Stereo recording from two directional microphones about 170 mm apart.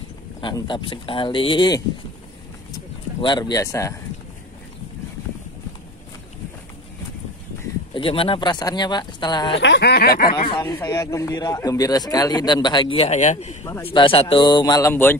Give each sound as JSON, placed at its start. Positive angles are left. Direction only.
{"t": 0.4, "sound": "a man's voice", "side_deg": 25}
{"t": 7.9, "sound": "a man's voice", "side_deg": 30}
{"t": 9.6, "sound": "speech", "side_deg": 85}
{"t": 10.6, "sound": "a man's voice", "side_deg": 20}
{"t": 13.8, "sound": "a man's voice", "side_deg": 30}